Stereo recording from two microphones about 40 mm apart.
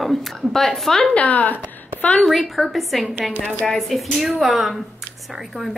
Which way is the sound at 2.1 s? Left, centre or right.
Centre.